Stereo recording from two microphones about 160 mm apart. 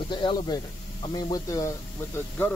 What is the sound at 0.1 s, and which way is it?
Speech, 30° left (ahead or behind).